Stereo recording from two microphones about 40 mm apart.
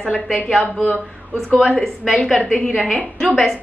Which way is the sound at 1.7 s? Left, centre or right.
Centre.